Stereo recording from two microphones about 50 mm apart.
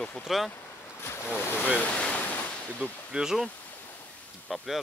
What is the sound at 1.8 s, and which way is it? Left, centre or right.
Speech, left.